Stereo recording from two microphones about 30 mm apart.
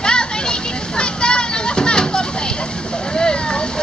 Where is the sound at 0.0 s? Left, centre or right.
Left.